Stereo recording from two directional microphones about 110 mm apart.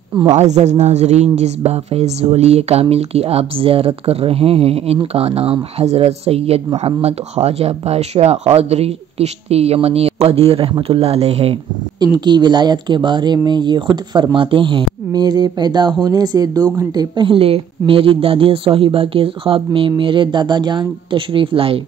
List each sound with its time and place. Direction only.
0.3 s speech: 85° right; by 6.6 s 70° right (ahead or behind)
6.8 s speech: 80° right
12.0 s speech: 40° right (ahead or behind)
17.3 s speech: 55° right (ahead or behind)